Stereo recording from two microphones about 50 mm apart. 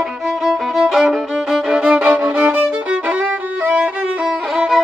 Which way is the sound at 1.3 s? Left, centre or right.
Centre.